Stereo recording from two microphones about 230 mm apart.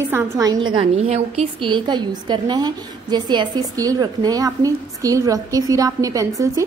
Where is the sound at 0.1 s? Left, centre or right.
Centre.